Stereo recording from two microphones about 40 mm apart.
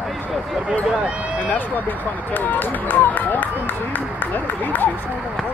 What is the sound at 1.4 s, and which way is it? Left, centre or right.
Speech, left.